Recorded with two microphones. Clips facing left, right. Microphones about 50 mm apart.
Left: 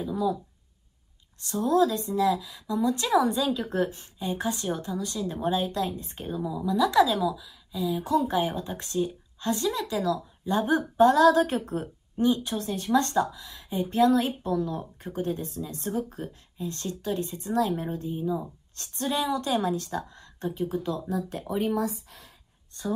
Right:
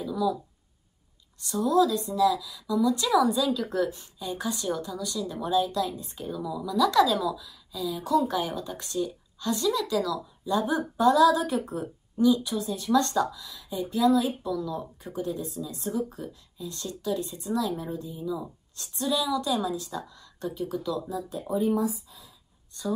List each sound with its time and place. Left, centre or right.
0.0 s a woman's voice: left
1.4 s a woman's voice: left